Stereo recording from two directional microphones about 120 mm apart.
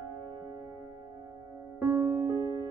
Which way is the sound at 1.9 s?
20° right (ahead or behind).